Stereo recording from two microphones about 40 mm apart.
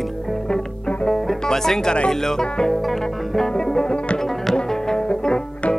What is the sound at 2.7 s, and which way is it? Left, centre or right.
Music, centre.